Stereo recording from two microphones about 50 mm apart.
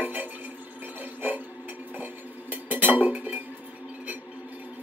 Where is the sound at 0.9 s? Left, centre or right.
Right.